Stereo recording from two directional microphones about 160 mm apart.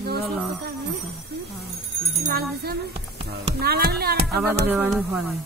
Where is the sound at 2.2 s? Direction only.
75° right (ahead or behind).